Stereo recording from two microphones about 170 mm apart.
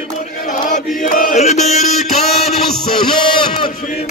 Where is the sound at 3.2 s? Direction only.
30° left (ahead or behind).